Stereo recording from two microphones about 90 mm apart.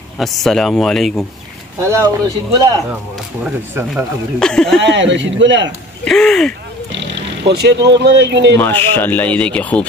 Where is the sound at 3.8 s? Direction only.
25° right (ahead or behind).